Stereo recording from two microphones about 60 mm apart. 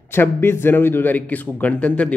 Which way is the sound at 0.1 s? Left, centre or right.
Left.